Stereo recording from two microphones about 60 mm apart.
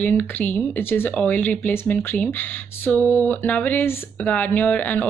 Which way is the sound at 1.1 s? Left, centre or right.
Left.